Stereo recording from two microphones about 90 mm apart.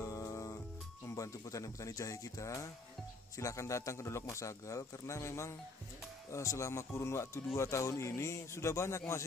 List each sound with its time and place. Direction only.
0.0 s music: 40° left (ahead or behind)
1.0 s a man's voice: 40° left (ahead or behind)